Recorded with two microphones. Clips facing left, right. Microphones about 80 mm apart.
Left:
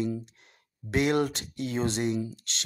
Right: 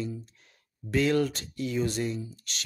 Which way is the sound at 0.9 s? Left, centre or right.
Left.